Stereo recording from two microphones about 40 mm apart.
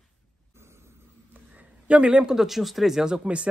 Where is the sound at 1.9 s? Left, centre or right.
Right.